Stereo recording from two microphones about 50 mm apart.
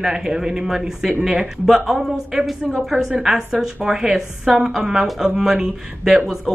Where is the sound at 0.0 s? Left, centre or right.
Centre.